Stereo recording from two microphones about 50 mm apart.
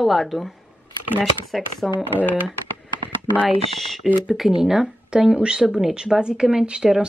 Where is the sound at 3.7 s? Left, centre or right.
Centre.